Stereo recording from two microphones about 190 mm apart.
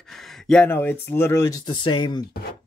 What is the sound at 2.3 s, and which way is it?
Speech, 55° left (ahead or behind).